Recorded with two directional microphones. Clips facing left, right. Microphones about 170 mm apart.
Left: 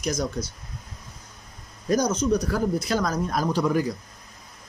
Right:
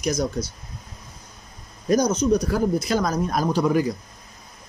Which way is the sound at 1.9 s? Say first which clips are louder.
Right 3 dB; 15° right (ahead or behind).